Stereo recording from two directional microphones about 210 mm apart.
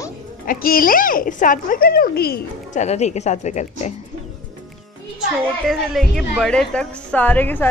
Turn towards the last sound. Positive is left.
turn(degrees=10)  # may be behind; listen again after turning